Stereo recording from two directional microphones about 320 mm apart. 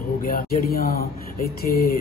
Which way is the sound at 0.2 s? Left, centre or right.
Left.